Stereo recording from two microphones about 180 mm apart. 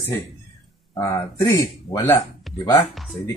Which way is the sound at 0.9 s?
20° left (ahead or behind).